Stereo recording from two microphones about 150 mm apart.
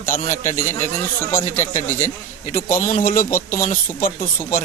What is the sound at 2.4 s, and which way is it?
Speech, 60° left (ahead or behind).